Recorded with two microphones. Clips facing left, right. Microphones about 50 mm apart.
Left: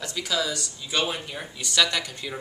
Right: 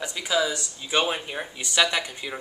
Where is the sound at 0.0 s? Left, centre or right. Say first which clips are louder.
Right 3 dB; centre.